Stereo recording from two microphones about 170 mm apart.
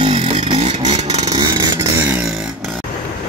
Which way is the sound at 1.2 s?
20° right (ahead or behind).